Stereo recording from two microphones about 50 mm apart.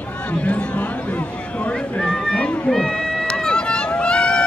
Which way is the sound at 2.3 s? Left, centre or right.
Left.